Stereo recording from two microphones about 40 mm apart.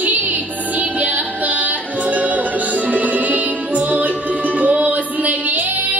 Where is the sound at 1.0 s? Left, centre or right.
Right.